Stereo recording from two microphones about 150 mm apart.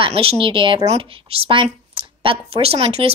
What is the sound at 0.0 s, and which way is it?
Speech, 40° right (ahead or behind).